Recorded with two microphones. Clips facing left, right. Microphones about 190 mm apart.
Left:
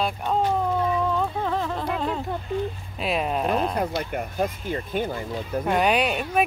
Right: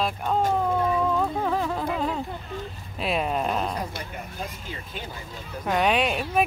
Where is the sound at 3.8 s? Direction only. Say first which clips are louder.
Left 7 dB; 55° left (ahead or behind).